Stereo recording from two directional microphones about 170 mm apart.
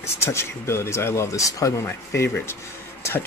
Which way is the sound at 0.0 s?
15° left (ahead or behind).